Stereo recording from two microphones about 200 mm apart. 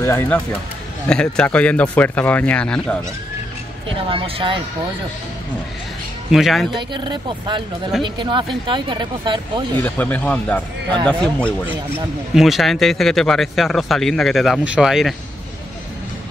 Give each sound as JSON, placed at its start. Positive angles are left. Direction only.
{"t": 0.0, "sound": "speech", "side_deg": 10}
{"t": 3.9, "sound": "speech", "side_deg": -25}
{"t": 6.3, "sound": "speech", "side_deg": 0}
{"t": 6.7, "sound": "speech", "side_deg": -25}
{"t": 9.8, "sound": "speech", "side_deg": 10}